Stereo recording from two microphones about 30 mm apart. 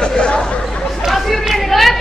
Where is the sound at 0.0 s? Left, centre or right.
Left.